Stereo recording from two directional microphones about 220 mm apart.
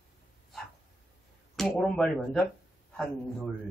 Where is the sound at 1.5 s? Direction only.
Centre (ahead or behind).